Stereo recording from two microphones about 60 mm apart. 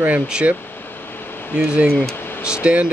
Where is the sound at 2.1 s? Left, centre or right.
Left.